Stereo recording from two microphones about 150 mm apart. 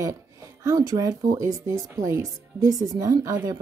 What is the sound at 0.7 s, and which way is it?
Speech, 25° right (ahead or behind).